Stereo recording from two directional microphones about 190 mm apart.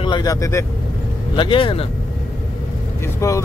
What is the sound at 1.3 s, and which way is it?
Speech, 25° left (ahead or behind).